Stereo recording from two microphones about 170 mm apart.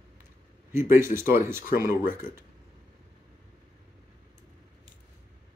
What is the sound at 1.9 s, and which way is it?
Speech, 50° left (ahead or behind).